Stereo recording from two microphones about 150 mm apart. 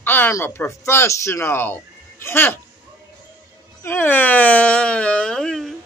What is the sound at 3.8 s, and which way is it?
Speech, 15° left (ahead or behind).